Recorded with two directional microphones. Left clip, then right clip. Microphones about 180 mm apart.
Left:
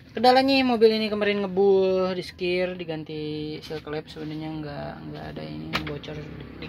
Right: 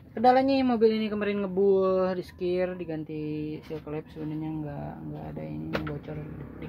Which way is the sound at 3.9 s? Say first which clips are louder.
Left 3 dB; 15° right (ahead or behind).